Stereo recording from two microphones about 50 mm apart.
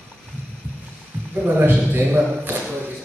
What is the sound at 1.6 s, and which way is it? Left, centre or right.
A man's voice, right.